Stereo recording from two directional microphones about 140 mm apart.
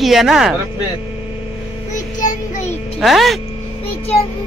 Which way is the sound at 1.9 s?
65° left (ahead or behind).